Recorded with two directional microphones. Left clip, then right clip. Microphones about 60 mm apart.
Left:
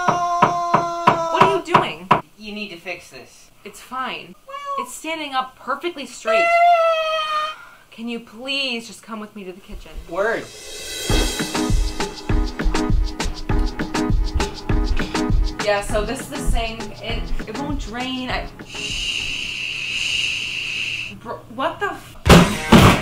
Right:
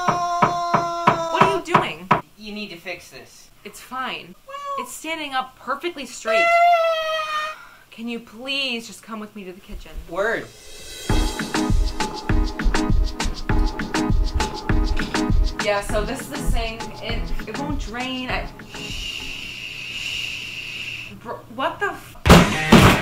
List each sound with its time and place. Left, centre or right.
0.0 s music: centre
1.0 s a sound: centre
3.6 s speech: centre
10.1 s music: centre
18.8 s a sound: centre
21.3 s thunk: centre